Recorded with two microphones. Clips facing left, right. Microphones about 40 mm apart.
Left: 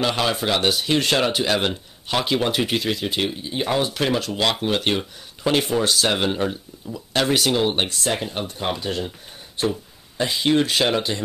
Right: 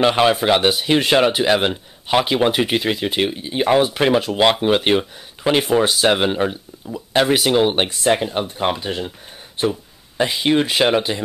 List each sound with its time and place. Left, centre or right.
0.0 s speech: right